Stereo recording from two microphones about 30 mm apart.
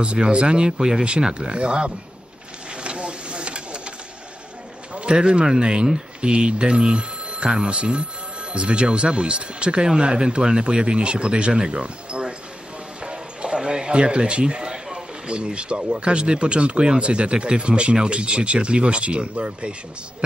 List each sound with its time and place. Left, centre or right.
0.0 s speech: right
0.7 s speech: centre
1.3 s speech: right
2.7 s a sound: right
5.1 s speech: right
11.7 s a sound: right
13.0 s music: right
13.6 s speech: right
14.7 s a sound: centre
15.2 s speech: right